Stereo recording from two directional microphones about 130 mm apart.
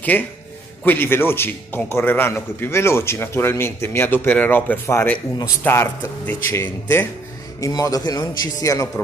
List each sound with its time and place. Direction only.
0.1 s a man's voice: 15° left (ahead or behind)